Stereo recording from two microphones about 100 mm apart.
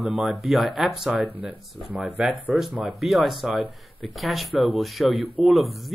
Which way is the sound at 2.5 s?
Centre (ahead or behind).